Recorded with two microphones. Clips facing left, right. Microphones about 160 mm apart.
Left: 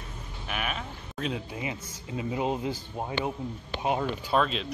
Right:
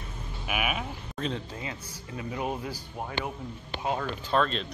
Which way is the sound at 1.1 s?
5° left (ahead or behind).